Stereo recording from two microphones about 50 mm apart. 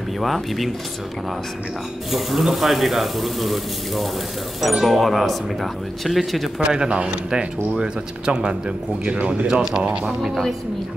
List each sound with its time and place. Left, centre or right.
0.2 s speech: centre
2.0 s speech: centre
6.6 s a man's voice: centre